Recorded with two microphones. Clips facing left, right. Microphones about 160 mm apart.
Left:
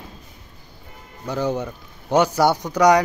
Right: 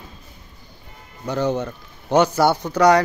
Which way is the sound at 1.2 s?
5° left (ahead or behind).